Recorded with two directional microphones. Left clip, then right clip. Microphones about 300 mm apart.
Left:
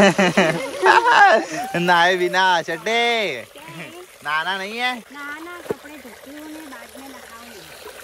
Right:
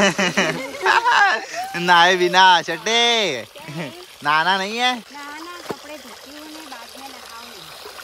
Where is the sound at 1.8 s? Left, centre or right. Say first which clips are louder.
Right 2 dB; centre.